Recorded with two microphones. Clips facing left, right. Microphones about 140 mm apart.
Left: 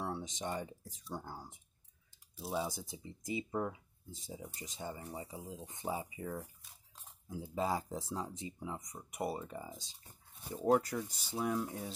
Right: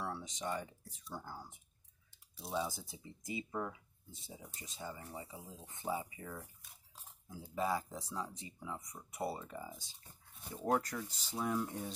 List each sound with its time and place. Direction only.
0.0 s speech: 25° left (ahead or behind)
2.3 s speech: centre (ahead or behind)
2.6 s speech: 20° left (ahead or behind); by 11.9 s 5° left (ahead or behind)